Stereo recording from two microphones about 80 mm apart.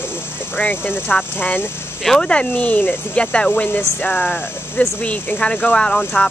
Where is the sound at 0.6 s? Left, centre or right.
Left.